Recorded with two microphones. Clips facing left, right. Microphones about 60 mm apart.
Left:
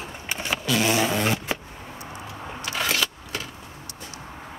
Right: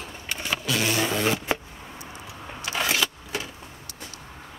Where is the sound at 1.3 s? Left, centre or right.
Centre.